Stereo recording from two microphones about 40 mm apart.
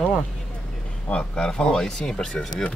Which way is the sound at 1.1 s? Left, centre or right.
Left.